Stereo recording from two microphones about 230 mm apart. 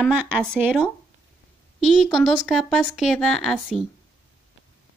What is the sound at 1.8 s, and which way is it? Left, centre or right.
Speech, centre.